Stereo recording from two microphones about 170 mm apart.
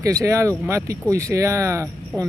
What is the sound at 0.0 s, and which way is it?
Speech, 20° right (ahead or behind).